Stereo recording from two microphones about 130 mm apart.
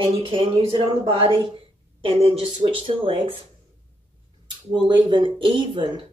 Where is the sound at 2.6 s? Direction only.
40° right (ahead or behind).